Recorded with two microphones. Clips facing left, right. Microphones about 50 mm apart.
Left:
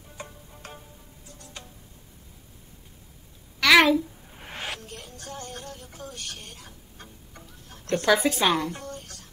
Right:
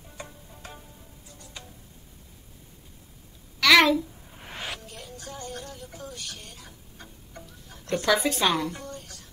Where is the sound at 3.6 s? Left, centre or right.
Centre.